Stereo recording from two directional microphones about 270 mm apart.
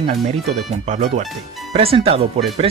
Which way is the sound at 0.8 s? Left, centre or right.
Right.